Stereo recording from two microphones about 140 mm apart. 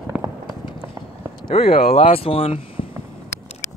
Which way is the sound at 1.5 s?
45° left (ahead or behind).